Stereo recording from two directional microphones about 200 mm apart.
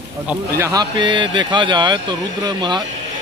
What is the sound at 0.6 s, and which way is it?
Speech, 20° right (ahead or behind).